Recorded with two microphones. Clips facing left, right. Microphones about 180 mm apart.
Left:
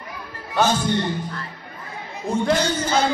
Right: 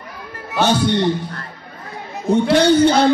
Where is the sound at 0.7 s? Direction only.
75° right (ahead or behind).